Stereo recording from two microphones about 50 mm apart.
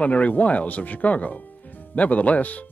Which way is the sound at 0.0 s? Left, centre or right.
Left.